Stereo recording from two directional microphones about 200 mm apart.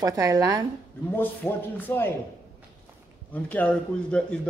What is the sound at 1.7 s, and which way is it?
Speech, 10° left (ahead or behind).